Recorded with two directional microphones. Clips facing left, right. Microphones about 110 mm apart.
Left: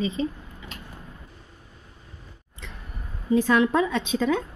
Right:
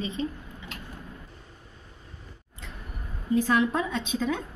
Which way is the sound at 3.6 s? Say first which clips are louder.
Left 4 dB; 90° left.